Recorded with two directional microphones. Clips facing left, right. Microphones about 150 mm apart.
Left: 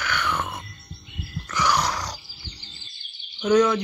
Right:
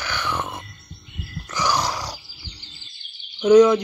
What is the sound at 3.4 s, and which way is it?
Speech, 15° right (ahead or behind).